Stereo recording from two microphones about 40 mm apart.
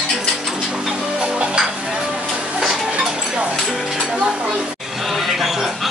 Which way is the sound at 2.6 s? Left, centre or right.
Centre.